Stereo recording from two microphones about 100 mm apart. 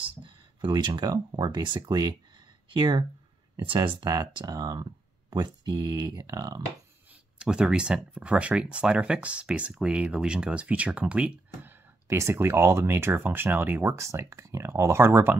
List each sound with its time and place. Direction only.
0.0 s speech: 55° right (ahead or behind)
3.6 s speech: 60° right (ahead or behind)
4.1 s speech: 40° right (ahead or behind)
7.1 s speech: 10° right (ahead or behind)